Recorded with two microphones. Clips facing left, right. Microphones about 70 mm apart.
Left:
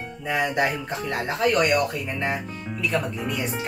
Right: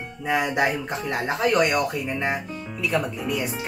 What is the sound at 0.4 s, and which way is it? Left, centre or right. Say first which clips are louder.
Music: left 1 dB; centre.